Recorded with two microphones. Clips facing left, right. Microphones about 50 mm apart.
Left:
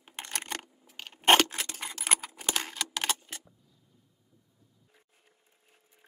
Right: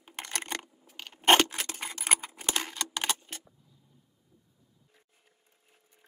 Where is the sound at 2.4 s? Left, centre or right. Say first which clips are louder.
Even; centre.